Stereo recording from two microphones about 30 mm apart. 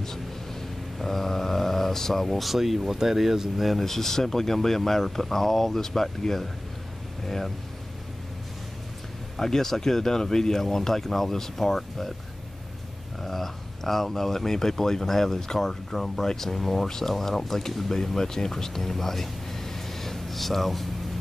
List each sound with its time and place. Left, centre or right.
0.0 s a sound: centre
2.2 s speech: centre
3.8 s speech: centre
9.4 s speech: centre
13.2 s speech: centre